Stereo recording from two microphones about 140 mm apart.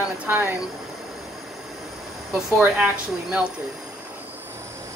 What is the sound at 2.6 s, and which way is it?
Speech, 10° right (ahead or behind).